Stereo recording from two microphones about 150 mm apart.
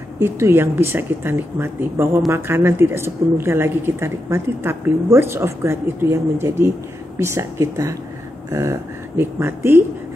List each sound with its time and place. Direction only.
0.2 s a woman's voice: 15° right (ahead or behind)